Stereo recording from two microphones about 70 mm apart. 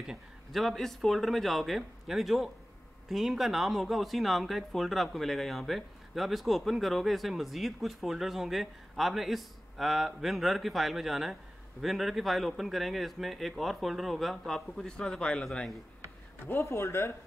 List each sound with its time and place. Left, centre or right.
0.0 s speech: centre
16.4 s speech: left